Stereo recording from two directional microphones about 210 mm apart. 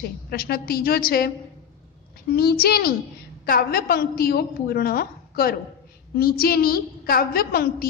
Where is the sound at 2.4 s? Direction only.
45° left (ahead or behind).